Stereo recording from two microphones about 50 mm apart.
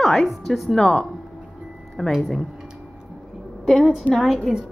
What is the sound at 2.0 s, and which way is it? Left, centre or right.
Speech, centre.